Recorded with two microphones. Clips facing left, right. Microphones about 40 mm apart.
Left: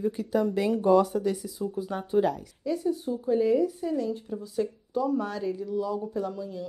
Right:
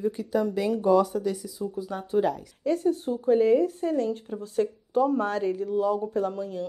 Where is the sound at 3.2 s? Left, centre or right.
Right.